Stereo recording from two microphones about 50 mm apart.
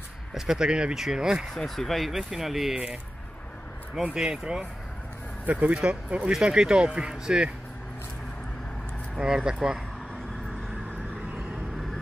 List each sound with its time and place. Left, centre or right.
0.3 s speech: centre
1.5 s speech: centre
2.7 s speech: right
4.1 s speech: centre
5.4 s speech: right
6.3 s speech: centre
9.2 s speech: centre